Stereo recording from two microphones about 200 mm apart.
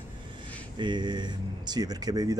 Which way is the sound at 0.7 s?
20° right (ahead or behind).